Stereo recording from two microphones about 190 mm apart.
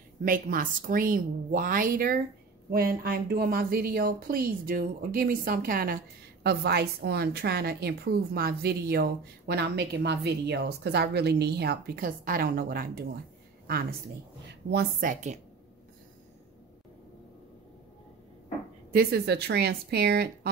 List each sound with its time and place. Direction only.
0.2 s a woman's voice: 50° right (ahead or behind)
18.9 s a woman's voice: 60° right (ahead or behind)